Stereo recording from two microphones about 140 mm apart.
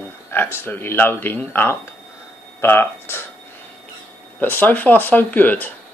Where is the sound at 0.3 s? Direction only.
15° left (ahead or behind).